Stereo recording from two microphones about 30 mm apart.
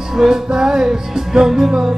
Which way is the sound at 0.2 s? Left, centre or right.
Centre.